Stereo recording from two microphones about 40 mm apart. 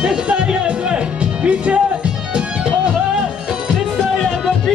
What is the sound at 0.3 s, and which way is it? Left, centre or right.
Music, right.